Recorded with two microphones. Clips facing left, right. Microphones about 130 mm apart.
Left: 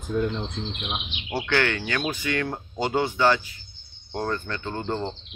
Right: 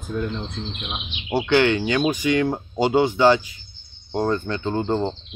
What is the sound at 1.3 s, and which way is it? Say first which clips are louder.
Speech: right 7 dB; 20° right (ahead or behind).